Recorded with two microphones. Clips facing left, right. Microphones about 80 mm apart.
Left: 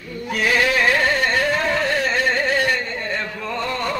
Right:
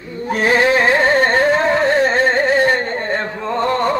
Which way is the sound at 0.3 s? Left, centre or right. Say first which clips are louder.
Right 5 dB; right.